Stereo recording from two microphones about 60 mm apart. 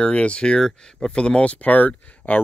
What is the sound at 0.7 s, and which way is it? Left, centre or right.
Speech, centre.